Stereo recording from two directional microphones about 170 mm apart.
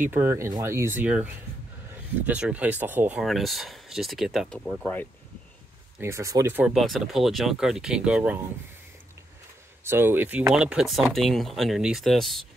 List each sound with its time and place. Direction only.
0.0 s speech: 10° right (ahead or behind); by 5.0 s 5° left (ahead or behind)
5.9 s speech: 15° right (ahead or behind)
9.8 s speech: 15° right (ahead or behind)